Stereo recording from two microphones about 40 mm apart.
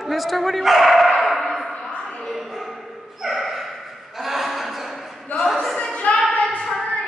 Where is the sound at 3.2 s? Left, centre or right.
Centre.